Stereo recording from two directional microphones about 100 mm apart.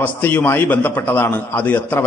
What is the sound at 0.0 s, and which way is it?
A man's voice, 15° left (ahead or behind).